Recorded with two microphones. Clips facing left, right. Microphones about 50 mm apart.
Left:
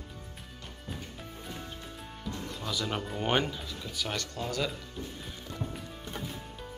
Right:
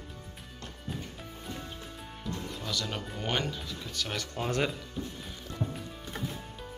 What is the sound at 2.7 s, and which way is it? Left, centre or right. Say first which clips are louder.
Speech: left 3 dB; centre.